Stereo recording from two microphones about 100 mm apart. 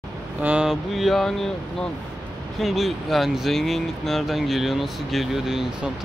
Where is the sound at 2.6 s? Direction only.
Centre (ahead or behind).